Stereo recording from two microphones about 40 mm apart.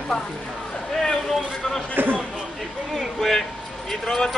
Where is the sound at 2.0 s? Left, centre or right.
Right.